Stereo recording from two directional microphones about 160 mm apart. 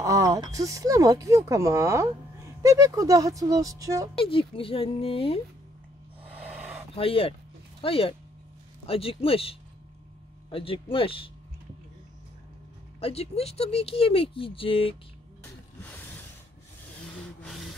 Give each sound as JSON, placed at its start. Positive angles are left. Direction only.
{"t": 0.0, "sound": "speech", "side_deg": -20}
{"t": 4.2, "sound": "speech", "side_deg": 35}
{"t": 7.0, "sound": "speech", "side_deg": 35}
{"t": 13.0, "sound": "speech", "side_deg": 40}
{"t": 17.4, "sound": "a sound", "side_deg": 0}